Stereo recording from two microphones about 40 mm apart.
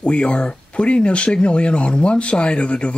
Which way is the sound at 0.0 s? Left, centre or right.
Left.